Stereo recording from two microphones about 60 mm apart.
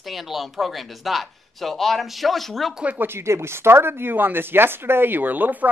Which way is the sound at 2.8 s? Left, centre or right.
Right.